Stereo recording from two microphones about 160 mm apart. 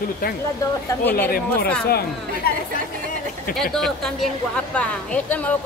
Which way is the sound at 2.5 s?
70° left (ahead or behind).